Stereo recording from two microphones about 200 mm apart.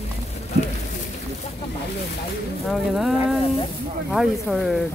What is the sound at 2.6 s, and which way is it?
Speech, centre (ahead or behind).